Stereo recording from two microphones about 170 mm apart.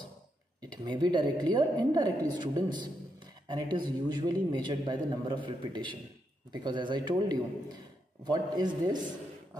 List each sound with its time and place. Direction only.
0.6 s a man's voice: 25° right (ahead or behind)